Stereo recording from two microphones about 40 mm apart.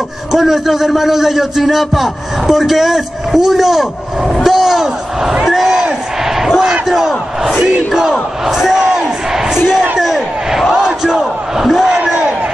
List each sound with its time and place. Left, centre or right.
0.3 s a man's voice: centre
4.4 s a sound: centre
5.4 s a man's voice: centre
6.4 s slam: centre
6.9 s battle cry: centre
9.7 s a sound: centre
10.0 s crowd: centre
11.1 s a sound: centre
12.0 s crowd: right